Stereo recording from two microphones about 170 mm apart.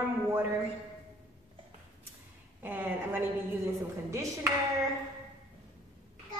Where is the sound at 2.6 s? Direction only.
10° right (ahead or behind).